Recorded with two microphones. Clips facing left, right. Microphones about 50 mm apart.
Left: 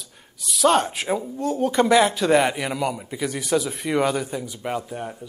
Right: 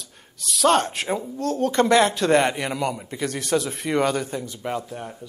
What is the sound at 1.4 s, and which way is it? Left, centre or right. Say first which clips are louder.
Speech: even; centre.